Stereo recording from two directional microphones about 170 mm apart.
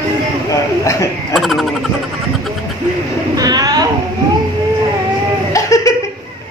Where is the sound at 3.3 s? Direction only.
25° right (ahead or behind).